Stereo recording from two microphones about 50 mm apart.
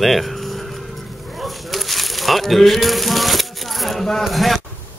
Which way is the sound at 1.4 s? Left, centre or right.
Centre.